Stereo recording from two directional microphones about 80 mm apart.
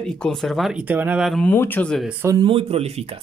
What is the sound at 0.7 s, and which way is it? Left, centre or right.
Speech, centre.